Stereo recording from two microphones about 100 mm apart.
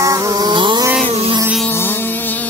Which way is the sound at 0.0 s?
35° right (ahead or behind).